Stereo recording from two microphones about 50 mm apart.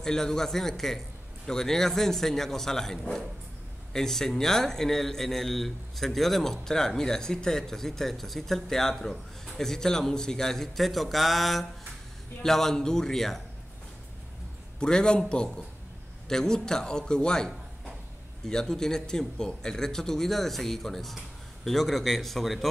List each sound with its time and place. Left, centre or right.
0.0 s a man's voice: centre
14.8 s a man's voice: centre